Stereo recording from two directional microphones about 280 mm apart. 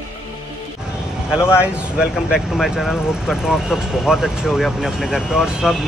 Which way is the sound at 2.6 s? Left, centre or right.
Centre.